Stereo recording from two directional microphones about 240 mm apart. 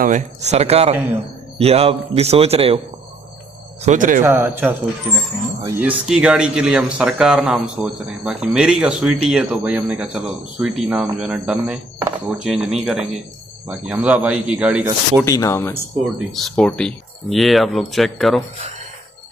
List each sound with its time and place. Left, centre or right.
0.0 s a man's voice: right
3.8 s speech: right
4.2 s a man's voice: centre
5.8 s speech: centre
15.2 s speech: centre
16.3 s speech: centre
18.6 s a sound: right